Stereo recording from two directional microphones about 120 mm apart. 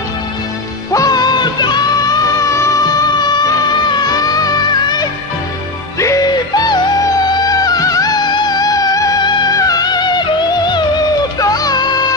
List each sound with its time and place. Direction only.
0.9 s music: 30° left (ahead or behind)
3.2 s music: 35° left (ahead or behind)